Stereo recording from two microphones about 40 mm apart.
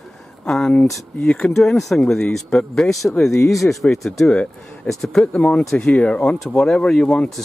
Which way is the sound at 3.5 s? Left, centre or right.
Centre.